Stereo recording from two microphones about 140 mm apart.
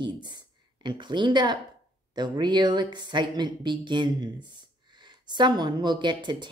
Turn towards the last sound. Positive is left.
turn(degrees=-35)  # may be behind; listen again after turning